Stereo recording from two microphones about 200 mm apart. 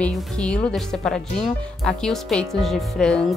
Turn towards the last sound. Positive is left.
turn(degrees=5)  # may be behind; listen again after turning